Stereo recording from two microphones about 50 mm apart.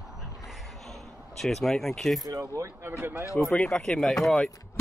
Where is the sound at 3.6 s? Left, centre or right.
Centre.